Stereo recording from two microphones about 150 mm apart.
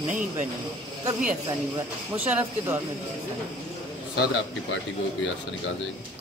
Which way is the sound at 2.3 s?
10° right (ahead or behind).